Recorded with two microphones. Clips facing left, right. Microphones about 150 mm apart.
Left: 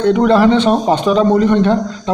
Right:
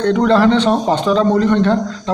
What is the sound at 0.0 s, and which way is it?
A man's voice, 10° left (ahead or behind).